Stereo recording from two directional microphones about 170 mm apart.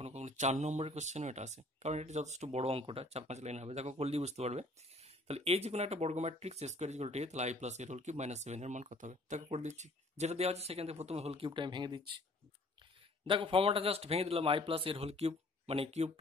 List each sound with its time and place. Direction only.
0.0 s speech: 45° right (ahead or behind); by 12.0 s 25° right (ahead or behind)
13.2 s speech: 30° right (ahead or behind)